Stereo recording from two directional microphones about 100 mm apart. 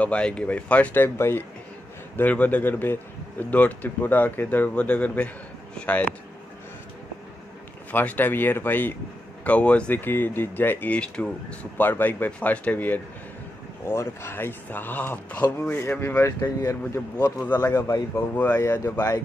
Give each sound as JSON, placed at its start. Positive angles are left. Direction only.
{"t": 0.0, "sound": "speech", "side_deg": 10}
{"t": 7.9, "sound": "speech", "side_deg": 15}
{"t": 18.1, "sound": "speech", "side_deg": 15}